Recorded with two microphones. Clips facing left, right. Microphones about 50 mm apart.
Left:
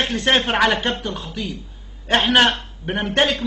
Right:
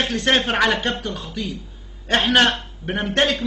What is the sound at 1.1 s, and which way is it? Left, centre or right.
Speech, left.